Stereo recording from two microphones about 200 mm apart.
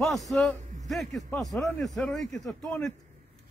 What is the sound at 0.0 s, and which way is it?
A man's voice, centre (ahead or behind).